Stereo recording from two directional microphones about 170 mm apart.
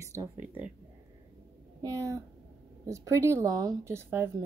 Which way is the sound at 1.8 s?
20° right (ahead or behind).